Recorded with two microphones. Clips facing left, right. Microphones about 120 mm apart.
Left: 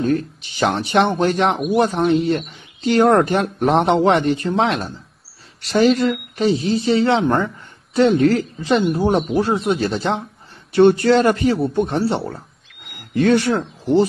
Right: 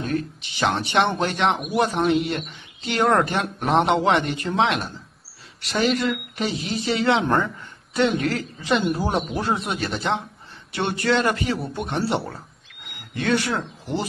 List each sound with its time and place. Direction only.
0.0 s speech: 40° left (ahead or behind)
9.0 s speech: centre (ahead or behind)
9.7 s speech: 30° left (ahead or behind)
12.9 s speech: 40° left (ahead or behind)
13.9 s speech: centre (ahead or behind)